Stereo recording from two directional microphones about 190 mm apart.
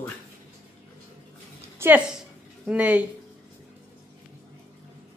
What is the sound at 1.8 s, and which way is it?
A woman's voice, 15° right (ahead or behind).